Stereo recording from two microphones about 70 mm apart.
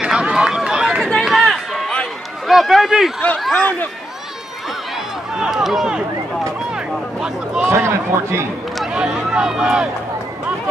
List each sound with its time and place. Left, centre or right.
0.0 s run: centre
1.0 s a sound: centre
2.4 s speech: centre
3.5 s speech: left
5.4 s speech: centre
6.7 s a sound: centre
7.6 s a man's voice: right
8.9 s speech: centre